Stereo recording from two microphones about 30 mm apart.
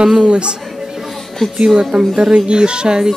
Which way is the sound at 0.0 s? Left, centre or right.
Right.